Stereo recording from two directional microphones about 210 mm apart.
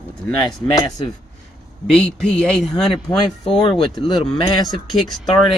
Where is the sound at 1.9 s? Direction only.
5° left (ahead or behind).